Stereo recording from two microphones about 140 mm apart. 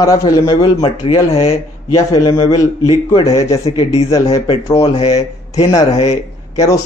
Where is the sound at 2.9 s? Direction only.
40° left (ahead or behind).